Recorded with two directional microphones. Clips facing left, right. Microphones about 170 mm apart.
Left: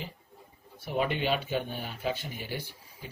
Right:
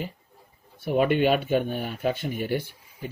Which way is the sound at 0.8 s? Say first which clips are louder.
Right 8 dB; 55° right (ahead or behind).